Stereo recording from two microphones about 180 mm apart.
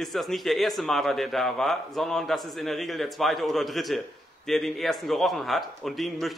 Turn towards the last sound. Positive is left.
turn(degrees=0)  # may be behind; listen again after turning